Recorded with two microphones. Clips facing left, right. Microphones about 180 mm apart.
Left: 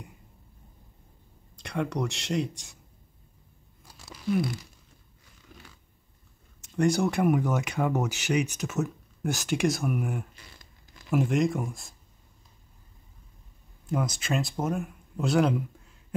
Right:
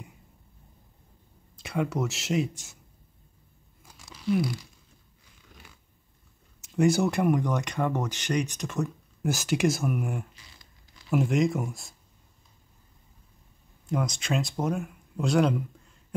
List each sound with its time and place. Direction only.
1.6 s speech: 5° right (ahead or behind)
4.4 s speech: centre (ahead or behind)
6.6 s speech: 5° right (ahead or behind)
10.3 s a sound: 45° left (ahead or behind)
11.1 s speech: centre (ahead or behind)
13.8 s speech: centre (ahead or behind)